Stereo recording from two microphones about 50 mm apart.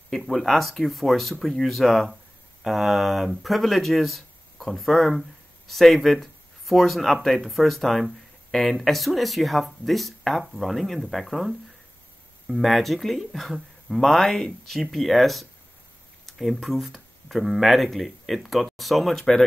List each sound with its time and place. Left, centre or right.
0.1 s speech: centre